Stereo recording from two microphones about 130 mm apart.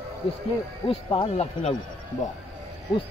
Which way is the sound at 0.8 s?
45° left (ahead or behind).